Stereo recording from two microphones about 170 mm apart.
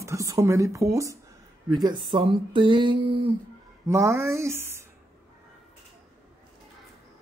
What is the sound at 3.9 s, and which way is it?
Speech, 15° right (ahead or behind).